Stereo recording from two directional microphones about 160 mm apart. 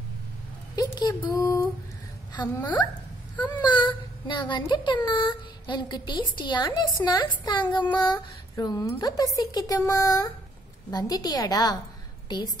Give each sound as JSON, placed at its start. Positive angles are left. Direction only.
{"t": 0.7, "sound": "speech", "side_deg": 25}